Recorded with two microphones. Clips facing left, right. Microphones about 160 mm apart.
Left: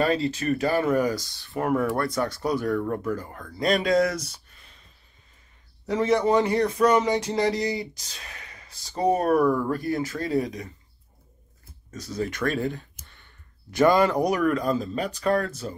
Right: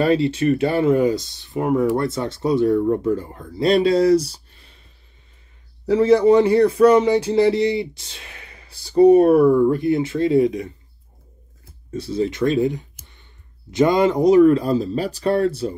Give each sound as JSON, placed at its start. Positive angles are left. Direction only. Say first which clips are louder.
{"t": 0.0, "sound": "speech", "louder": "right 6 dB", "side_deg": -30}
{"t": 5.9, "sound": "a man's voice", "louder": "right 8 dB", "side_deg": -30}
{"t": 11.9, "sound": "speech", "louder": "right 8 dB", "side_deg": -30}